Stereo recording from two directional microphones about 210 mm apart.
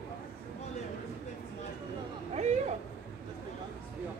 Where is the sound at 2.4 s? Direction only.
30° right (ahead or behind).